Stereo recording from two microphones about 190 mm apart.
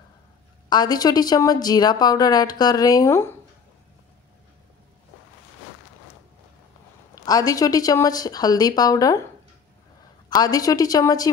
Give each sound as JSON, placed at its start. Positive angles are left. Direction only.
{"t": 0.7, "sound": "a woman's voice", "side_deg": 20}
{"t": 7.2, "sound": "a woman's voice", "side_deg": 20}
{"t": 10.3, "sound": "a woman's voice", "side_deg": 20}